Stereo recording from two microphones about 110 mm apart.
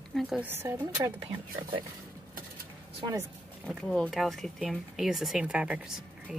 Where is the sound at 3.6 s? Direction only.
Centre (ahead or behind).